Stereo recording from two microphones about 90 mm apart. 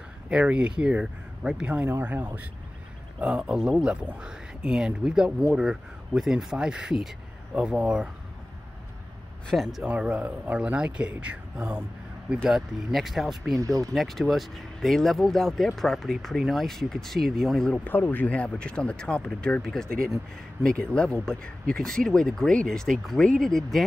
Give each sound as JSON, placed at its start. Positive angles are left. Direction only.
{"t": 0.3, "sound": "speech", "side_deg": -15}
{"t": 1.9, "sound": "speech", "side_deg": -25}
{"t": 9.5, "sound": "speech", "side_deg": 0}
{"t": 9.8, "sound": "speech", "side_deg": -15}
{"t": 12.4, "sound": "speech", "side_deg": -5}
{"t": 13.6, "sound": "speech", "side_deg": -40}
{"t": 13.9, "sound": "speech", "side_deg": 0}
{"t": 17.8, "sound": "speech", "side_deg": 20}